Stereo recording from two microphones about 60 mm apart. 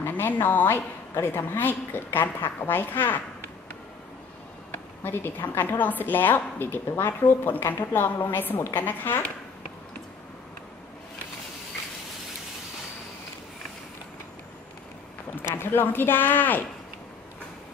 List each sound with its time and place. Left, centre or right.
0.0 s a woman's voice: left
5.0 s a woman's voice: left
15.4 s a woman's voice: left